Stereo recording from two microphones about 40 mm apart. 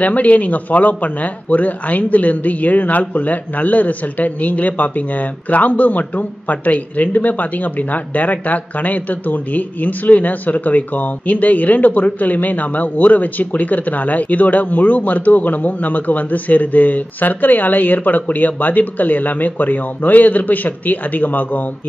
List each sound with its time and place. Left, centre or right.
0.0 s speech: left